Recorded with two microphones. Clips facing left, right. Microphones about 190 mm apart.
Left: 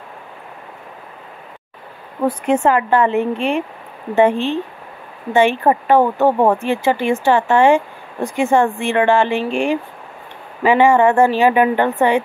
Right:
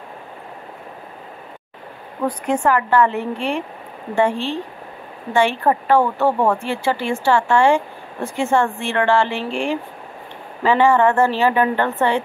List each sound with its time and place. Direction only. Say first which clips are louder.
2.4 s a woman's voice: left 3 dB; 25° left (ahead or behind)